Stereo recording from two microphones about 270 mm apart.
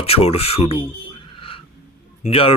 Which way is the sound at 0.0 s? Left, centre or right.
Left.